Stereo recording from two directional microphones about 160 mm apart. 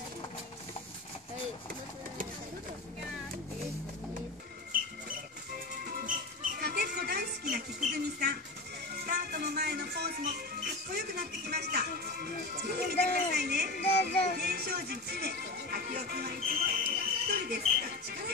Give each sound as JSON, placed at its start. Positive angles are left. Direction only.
{"t": 5.9, "sound": "music", "side_deg": -65}
{"t": 7.4, "sound": "a sound", "side_deg": -70}
{"t": 8.9, "sound": "music", "side_deg": -75}